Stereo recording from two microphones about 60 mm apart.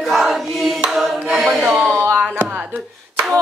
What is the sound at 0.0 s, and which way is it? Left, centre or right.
Choir, centre.